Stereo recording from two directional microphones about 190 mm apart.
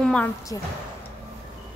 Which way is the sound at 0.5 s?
20° left (ahead or behind).